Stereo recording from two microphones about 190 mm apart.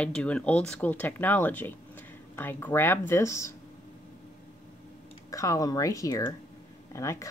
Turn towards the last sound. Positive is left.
turn(degrees=15)  # may be behind; listen again after turning